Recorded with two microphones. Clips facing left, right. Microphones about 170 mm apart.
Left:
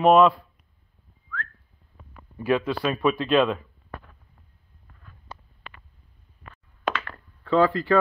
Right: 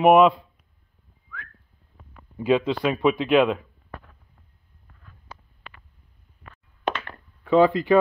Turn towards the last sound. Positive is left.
turn(degrees=-20)  # may be behind; listen again after turning